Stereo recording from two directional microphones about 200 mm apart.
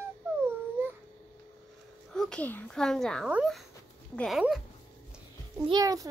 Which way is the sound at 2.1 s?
5° left (ahead or behind).